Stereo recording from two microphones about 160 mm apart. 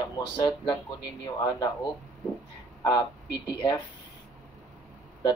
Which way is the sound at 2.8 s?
25° left (ahead or behind).